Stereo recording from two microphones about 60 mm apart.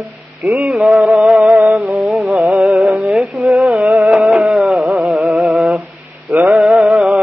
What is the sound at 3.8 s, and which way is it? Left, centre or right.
Music, centre.